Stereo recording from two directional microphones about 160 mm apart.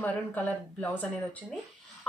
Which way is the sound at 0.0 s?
10° left (ahead or behind).